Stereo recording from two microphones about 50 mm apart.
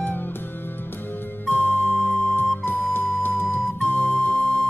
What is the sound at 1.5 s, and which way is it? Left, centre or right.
Music, left.